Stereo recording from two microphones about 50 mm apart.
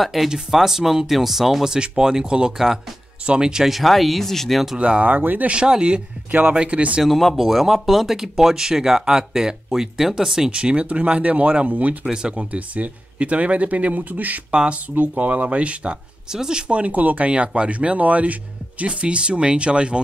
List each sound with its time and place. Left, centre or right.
0.0 s speech: centre
3.7 s speech: centre
4.7 s speech: right
5.1 s speech: right
5.5 s speech: centre
7.1 s speech: centre; by 12.0 s right
12.0 s speech: centre
12.5 s speech: right
14.5 s speech: right
16.3 s speech: centre